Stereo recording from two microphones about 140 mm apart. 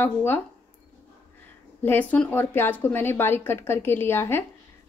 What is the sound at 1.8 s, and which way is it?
A woman's voice, 15° left (ahead or behind).